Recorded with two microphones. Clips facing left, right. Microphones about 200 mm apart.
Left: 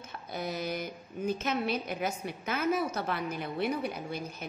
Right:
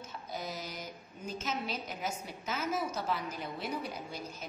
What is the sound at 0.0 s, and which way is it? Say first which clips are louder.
A woman's voice: left 4 dB; 65° left (ahead or behind).